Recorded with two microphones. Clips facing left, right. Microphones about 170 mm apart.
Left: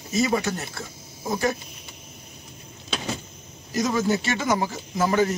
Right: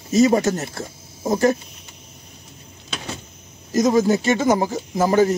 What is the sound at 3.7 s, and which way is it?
Speech, 40° right (ahead or behind).